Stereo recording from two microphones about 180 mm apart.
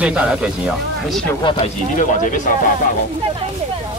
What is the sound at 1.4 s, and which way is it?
Speech, 25° left (ahead or behind).